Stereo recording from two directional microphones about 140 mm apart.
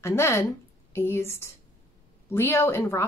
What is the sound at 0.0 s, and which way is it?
A woman's voice, 20° left (ahead or behind).